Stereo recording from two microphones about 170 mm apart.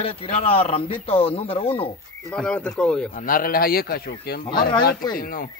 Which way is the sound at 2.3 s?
5° left (ahead or behind).